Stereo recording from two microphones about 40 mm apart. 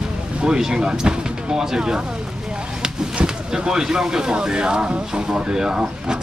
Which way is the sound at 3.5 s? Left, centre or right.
Centre.